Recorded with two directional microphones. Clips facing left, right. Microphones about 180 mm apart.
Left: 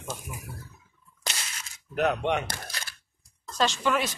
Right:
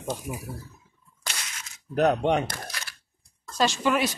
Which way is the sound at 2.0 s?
35° right (ahead or behind).